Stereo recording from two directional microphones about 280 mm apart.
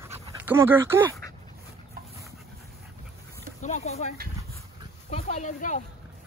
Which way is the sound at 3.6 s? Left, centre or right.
Left.